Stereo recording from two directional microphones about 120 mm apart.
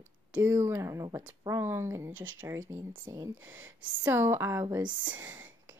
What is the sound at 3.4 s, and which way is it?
Speech, 15° right (ahead or behind).